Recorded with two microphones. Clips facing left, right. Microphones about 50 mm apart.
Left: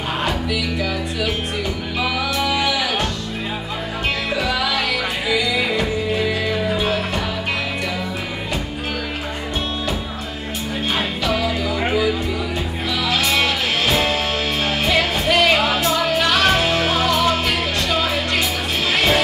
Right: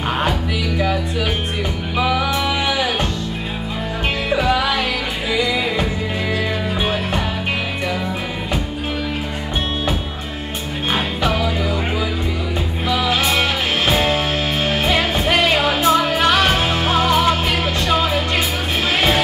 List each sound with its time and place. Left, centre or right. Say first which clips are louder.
0.2 s music: right 1 dB; right
5.3 s music: right 1 dB; right
12.9 s music: right 2 dB; right